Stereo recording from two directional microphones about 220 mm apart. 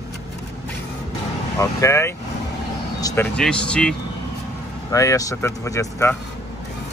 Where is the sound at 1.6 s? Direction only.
15° left (ahead or behind).